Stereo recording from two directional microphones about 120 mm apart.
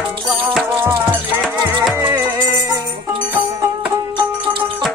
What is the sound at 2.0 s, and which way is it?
Music, 20° right (ahead or behind).